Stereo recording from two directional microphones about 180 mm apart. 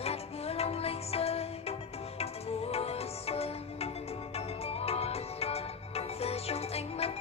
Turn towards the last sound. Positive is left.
turn(degrees=35)  # may be behind; listen again after turning